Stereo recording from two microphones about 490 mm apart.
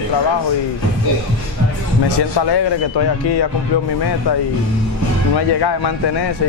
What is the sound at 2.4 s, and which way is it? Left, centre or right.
Speech, left.